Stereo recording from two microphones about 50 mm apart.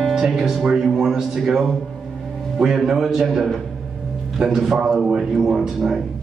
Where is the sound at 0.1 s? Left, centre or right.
Centre.